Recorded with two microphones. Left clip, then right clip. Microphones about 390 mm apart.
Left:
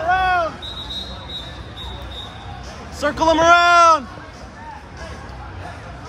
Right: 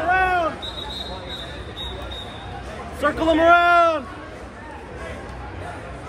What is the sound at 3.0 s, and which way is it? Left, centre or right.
A man's voice, centre.